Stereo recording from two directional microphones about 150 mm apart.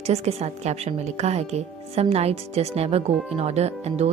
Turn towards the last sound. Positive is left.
turn(degrees=-45)  # may be behind; listen again after turning